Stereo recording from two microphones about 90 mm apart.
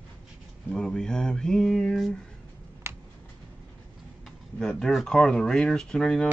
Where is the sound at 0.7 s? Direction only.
5° left (ahead or behind).